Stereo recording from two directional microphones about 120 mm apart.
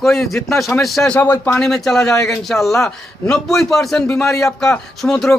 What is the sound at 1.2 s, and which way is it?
Speech, 15° left (ahead or behind).